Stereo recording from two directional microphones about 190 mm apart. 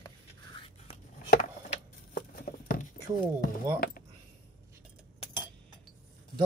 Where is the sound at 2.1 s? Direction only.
50° left (ahead or behind).